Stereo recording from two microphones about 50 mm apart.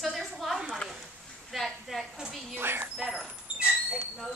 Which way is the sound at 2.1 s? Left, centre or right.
Centre.